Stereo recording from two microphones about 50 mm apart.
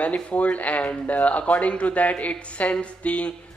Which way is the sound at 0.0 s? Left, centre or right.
Left.